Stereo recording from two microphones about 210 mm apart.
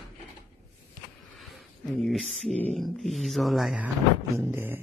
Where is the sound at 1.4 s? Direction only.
Centre (ahead or behind).